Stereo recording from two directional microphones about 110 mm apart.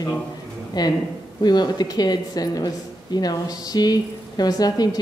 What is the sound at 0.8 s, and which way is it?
Speech, 40° left (ahead or behind).